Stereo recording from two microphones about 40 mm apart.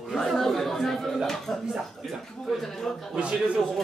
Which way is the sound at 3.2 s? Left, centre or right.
Right.